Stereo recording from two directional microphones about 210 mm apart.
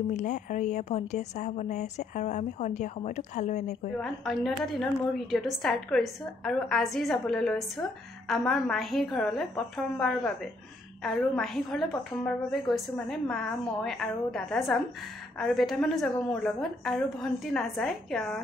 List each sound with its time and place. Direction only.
0.1 s speech: 35° left (ahead or behind)
4.0 s a woman's voice: centre (ahead or behind)